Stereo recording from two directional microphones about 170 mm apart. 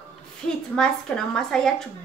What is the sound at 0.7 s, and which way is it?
Speech, 5° left (ahead or behind).